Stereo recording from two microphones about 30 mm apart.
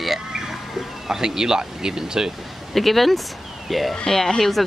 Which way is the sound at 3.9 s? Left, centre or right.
Centre.